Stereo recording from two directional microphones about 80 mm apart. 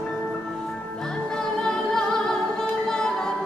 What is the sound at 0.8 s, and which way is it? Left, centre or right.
Music, centre.